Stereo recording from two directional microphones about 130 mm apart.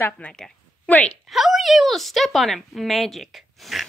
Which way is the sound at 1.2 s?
Centre (ahead or behind).